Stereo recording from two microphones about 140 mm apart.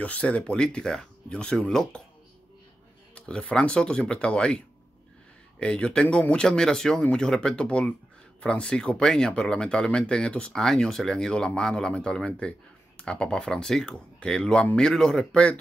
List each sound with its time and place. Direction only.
0.0 s speech: 10° left (ahead or behind)
3.2 s speech: 10° left (ahead or behind)
5.6 s speech: 5° left (ahead or behind)